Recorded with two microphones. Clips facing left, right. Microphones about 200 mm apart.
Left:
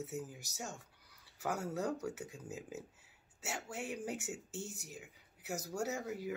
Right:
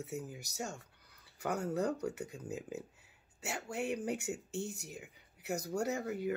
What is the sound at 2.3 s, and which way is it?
Speech, 65° right (ahead or behind).